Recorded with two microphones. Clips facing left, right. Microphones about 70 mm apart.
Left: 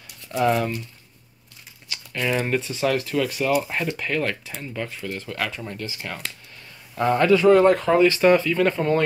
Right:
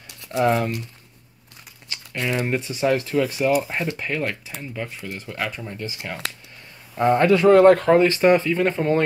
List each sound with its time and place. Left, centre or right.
0.3 s speech: right
2.1 s speech: centre
7.2 s speech: right